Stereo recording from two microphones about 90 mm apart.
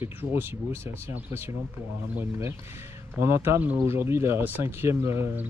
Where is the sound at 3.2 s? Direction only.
30° right (ahead or behind).